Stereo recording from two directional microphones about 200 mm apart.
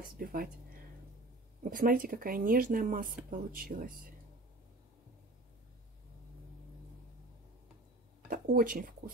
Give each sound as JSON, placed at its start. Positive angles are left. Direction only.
{"t": 0.2, "sound": "speech", "side_deg": -45}
{"t": 1.6, "sound": "speech", "side_deg": -45}
{"t": 8.3, "sound": "speech", "side_deg": -45}